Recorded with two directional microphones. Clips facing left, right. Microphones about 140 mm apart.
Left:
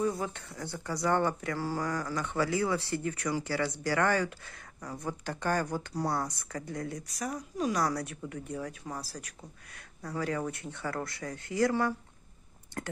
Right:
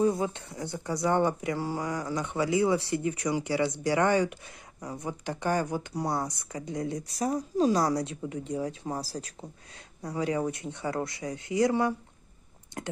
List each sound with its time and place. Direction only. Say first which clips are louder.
0.0 s speech: right 5 dB; 20° right (ahead or behind)
7.1 s speech: right 7 dB; 30° right (ahead or behind)